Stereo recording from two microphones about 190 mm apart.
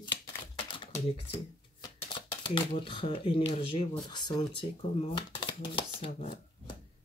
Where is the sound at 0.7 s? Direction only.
25° left (ahead or behind).